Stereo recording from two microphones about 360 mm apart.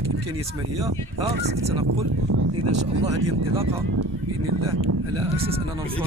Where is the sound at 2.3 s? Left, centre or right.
Right.